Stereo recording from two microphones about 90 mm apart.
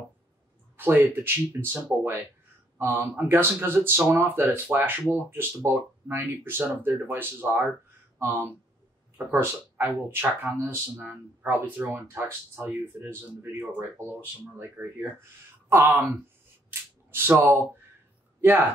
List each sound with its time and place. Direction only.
0.7 s speech: 25° right (ahead or behind)
14.8 s speech: 15° right (ahead or behind)
17.3 s speech: 20° right (ahead or behind)